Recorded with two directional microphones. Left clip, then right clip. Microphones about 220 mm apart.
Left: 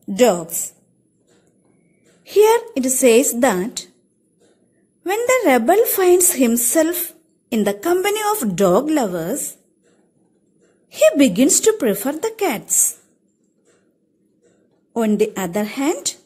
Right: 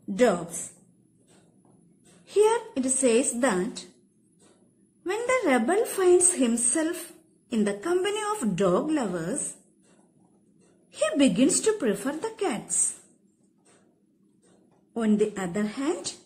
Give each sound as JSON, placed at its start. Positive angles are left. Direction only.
{"t": 2.2, "sound": "a woman's voice", "side_deg": 35}
{"t": 5.0, "sound": "a woman's voice", "side_deg": 30}
{"t": 10.9, "sound": "a woman's voice", "side_deg": 35}
{"t": 15.0, "sound": "a woman's voice", "side_deg": 35}